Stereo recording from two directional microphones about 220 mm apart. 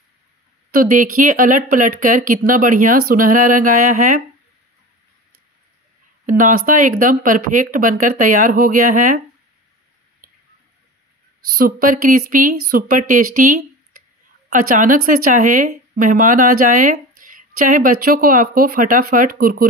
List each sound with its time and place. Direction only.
0.7 s speech: 35° right (ahead or behind)
6.2 s speech: 35° right (ahead or behind)
10.2 s drip: 40° right (ahead or behind)
11.5 s speech: 40° right (ahead or behind)